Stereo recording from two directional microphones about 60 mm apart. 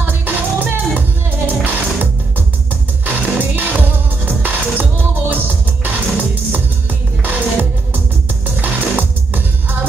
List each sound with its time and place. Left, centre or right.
0.0 s music: right
3.1 s music: right